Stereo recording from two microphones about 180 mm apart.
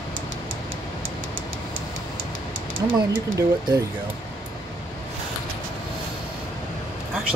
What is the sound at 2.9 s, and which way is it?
Speech, 10° right (ahead or behind).